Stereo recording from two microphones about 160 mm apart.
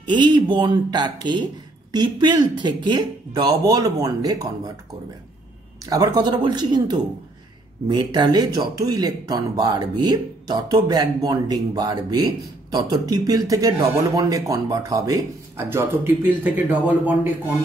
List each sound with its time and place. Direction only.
0.0 s speech: 30° right (ahead or behind)
5.9 s speech: 25° right (ahead or behind)